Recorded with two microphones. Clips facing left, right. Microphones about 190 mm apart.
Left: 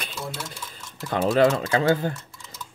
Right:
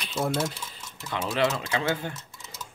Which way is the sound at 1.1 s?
45° left (ahead or behind).